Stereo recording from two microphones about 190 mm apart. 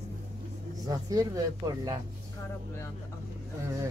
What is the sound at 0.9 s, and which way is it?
Speech, 20° right (ahead or behind).